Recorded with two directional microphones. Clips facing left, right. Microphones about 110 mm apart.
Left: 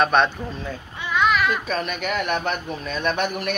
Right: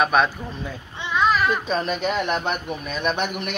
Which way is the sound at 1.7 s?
30° right (ahead or behind).